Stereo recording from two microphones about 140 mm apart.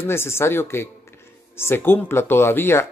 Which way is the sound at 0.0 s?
15° left (ahead or behind).